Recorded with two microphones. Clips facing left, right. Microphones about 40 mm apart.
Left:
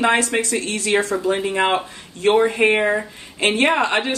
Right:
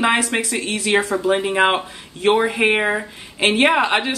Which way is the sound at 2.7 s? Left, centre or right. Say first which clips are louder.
Left 1 dB; centre.